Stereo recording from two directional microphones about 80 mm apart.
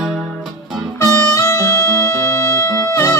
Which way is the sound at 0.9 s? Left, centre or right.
Left.